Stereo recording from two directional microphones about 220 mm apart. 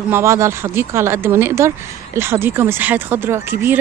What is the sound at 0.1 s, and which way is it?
Speech, 10° right (ahead or behind).